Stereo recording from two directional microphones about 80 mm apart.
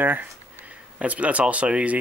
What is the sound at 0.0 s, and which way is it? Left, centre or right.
Speech, right.